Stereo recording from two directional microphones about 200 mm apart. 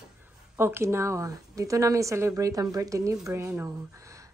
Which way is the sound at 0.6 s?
10° right (ahead or behind).